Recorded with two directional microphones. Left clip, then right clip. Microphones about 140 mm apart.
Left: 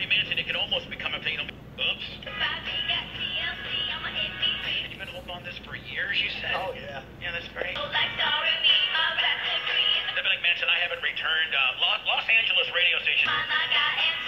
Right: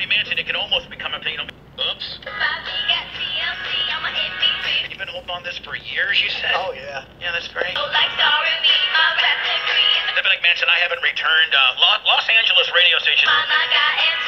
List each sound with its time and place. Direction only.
0.0 s radio: 30° right (ahead or behind)
2.5 s music: 30° right (ahead or behind)
5.9 s a sound: 35° right (ahead or behind)
7.2 s music: 30° right (ahead or behind)